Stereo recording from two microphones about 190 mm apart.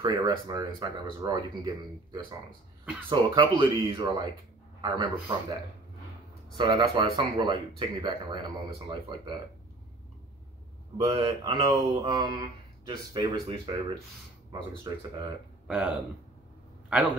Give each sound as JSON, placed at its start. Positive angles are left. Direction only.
{"t": 0.0, "sound": "speech", "side_deg": -20}
{"t": 11.1, "sound": "speech", "side_deg": -30}
{"t": 15.6, "sound": "speech", "side_deg": -5}